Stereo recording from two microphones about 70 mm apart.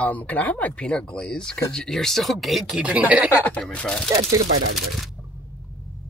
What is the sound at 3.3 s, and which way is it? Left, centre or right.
Speech, left.